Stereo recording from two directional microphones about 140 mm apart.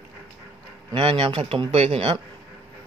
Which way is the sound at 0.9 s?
40° right (ahead or behind).